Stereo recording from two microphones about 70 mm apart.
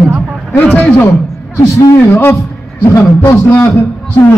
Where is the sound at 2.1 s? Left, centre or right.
Left.